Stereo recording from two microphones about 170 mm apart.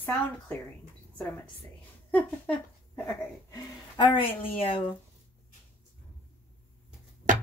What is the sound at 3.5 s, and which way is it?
Speech, 25° left (ahead or behind).